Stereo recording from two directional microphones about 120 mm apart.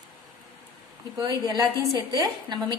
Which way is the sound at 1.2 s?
35° right (ahead or behind).